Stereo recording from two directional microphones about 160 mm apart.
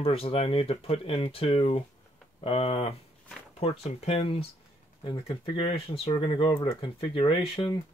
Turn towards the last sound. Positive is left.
turn(degrees=35)  # may be behind; listen again after turning